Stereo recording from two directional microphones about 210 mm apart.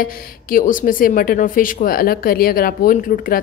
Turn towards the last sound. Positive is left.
turn(degrees=40)  # may be behind; listen again after turning